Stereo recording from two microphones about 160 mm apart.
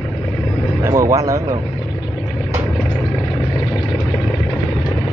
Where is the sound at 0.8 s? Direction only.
20° right (ahead or behind).